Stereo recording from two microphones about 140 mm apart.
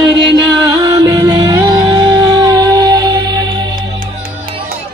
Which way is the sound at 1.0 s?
30° right (ahead or behind).